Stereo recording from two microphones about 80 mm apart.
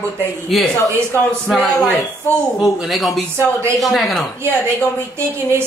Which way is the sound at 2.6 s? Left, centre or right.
Centre.